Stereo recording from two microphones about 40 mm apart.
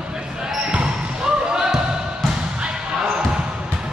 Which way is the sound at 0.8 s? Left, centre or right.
Centre.